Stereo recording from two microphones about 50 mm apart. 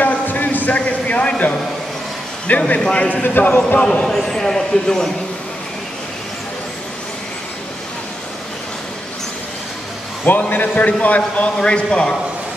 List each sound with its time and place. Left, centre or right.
0.0 s a sound: left
2.5 s a man's voice: left
2.8 s a man's voice: centre
3.2 s a man's voice: left
3.9 s speech: centre
10.5 s a man's voice: left; by 12.2 s centre